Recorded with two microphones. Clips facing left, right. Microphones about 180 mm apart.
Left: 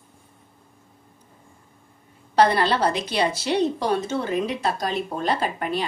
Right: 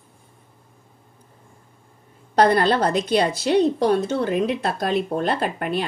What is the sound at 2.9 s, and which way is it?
Speech, centre (ahead or behind).